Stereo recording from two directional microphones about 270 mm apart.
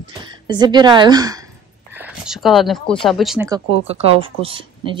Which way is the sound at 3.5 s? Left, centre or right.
Right.